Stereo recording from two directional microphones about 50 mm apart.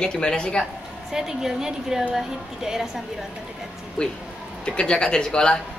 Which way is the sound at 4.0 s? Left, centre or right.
Left.